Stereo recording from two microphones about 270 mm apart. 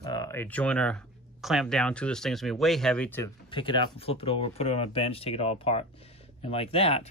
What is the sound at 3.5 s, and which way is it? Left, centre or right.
Speech, centre.